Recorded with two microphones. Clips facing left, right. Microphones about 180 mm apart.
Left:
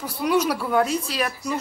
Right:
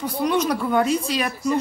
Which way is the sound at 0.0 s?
10° left (ahead or behind).